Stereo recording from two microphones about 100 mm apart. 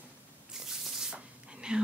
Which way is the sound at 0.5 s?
5° right (ahead or behind).